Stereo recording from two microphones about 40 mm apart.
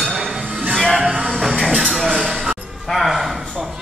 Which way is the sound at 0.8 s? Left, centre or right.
Centre.